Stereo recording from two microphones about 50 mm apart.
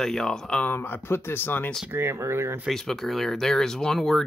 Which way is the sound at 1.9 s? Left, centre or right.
Right.